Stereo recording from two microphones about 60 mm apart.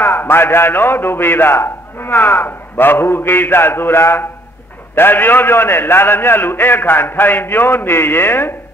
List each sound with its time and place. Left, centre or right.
0.0 s a man's voice: left